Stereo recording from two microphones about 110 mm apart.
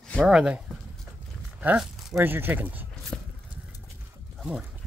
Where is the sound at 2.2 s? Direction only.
20° right (ahead or behind).